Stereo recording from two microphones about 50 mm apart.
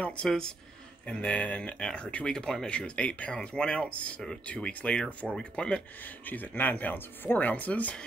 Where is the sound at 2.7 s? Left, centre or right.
Left.